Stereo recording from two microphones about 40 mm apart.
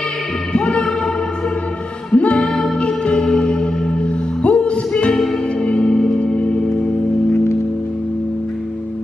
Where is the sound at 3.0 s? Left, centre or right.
Left.